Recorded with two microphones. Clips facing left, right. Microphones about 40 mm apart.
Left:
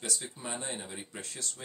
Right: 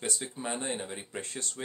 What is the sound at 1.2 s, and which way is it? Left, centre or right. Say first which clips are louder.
Speech: right 3 dB; right.